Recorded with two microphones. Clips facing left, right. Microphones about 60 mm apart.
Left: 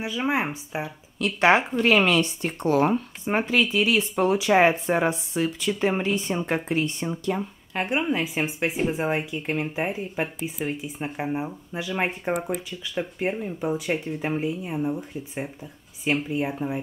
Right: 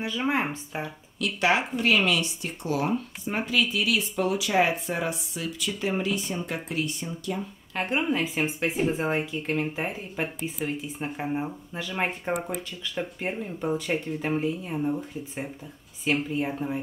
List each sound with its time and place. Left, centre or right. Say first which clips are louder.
0.0 s speech: left 1 dB; centre
1.2 s speech: left 5 dB; left
3.3 s speech: left 4 dB; left
7.7 s speech: left 1 dB; centre